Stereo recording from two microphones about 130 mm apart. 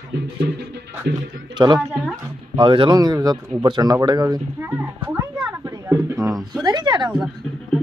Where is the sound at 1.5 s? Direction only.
35° right (ahead or behind).